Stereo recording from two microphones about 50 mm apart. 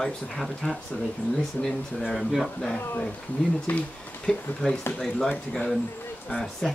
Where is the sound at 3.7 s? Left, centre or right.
Left.